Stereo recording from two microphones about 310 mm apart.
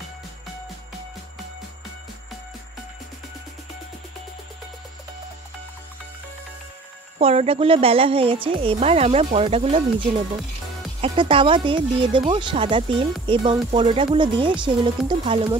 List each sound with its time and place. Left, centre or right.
7.2 s speech: centre